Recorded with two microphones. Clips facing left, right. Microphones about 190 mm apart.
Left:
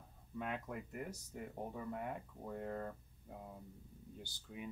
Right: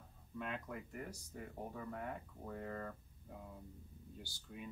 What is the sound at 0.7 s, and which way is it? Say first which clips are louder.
Speech: left 2 dB; 10° left (ahead or behind).